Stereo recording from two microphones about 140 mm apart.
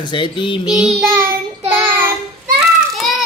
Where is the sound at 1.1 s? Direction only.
15° right (ahead or behind).